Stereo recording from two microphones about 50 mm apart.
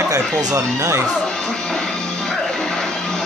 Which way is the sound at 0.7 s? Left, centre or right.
Right.